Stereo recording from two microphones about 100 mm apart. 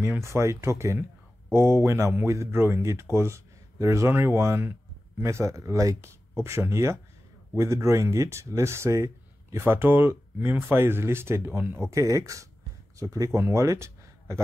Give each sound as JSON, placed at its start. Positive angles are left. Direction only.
{"t": 0.0, "sound": "speech", "side_deg": -25}
{"t": 11.9, "sound": "speech", "side_deg": -35}